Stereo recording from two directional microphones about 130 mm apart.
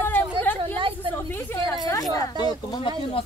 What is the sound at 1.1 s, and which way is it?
Speech, 15° left (ahead or behind).